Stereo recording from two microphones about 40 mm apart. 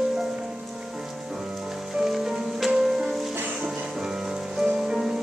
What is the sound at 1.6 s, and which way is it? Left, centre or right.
Music, centre.